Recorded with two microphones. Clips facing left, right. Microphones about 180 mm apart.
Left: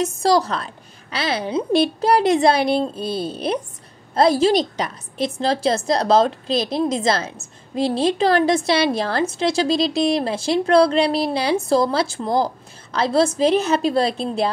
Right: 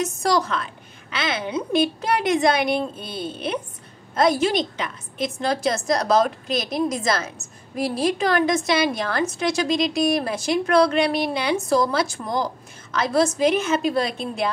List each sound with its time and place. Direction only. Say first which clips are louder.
0.0 s a woman's voice: left 4 dB; 30° left (ahead or behind)